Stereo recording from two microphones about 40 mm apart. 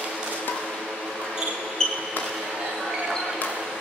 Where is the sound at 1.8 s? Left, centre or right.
Centre.